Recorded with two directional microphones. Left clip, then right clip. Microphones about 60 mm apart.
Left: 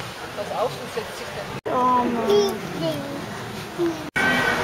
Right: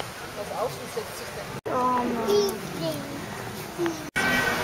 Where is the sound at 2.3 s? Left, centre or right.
Centre.